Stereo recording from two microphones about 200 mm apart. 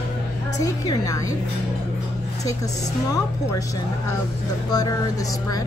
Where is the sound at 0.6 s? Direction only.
15° left (ahead or behind).